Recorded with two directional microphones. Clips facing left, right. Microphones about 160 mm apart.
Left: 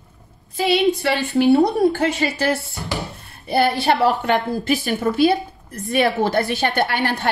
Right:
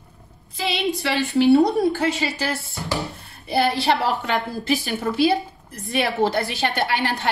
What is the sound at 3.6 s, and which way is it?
A woman's voice, 50° left (ahead or behind).